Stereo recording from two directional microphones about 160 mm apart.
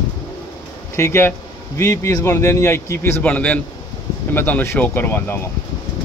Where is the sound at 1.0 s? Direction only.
15° left (ahead or behind).